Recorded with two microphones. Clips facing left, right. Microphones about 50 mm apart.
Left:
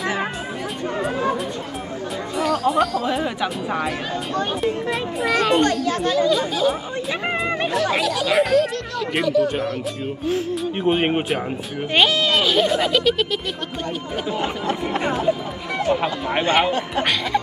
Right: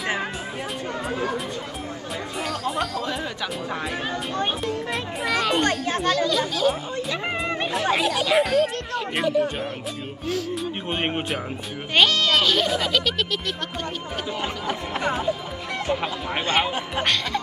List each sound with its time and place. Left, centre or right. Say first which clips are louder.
2.4 s speech: left 9 dB; centre
3.1 s a child's voice: left 6 dB; centre
4.8 s speech: left 4 dB; centre
5.6 s speech: left 4 dB; right
6.0 s a child's voice: left 3 dB; centre
8.3 s speech: left 3 dB; centre
9.2 s speech: left 4 dB; right
10.5 s a child's voice: left 7 dB; centre
15.9 s a child's voice: left 5 dB; centre